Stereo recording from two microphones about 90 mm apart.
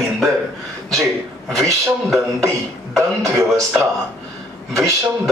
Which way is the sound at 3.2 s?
40° right (ahead or behind).